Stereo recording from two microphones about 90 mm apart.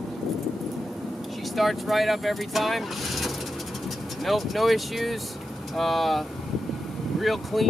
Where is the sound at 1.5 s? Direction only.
Centre (ahead or behind).